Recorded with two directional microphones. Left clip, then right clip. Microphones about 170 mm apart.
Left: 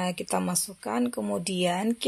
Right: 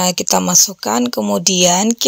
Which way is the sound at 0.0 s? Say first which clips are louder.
Right 13 dB; 50° right (ahead or behind).